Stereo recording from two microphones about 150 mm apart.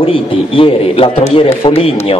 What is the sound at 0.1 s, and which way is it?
A man's voice, 35° left (ahead or behind).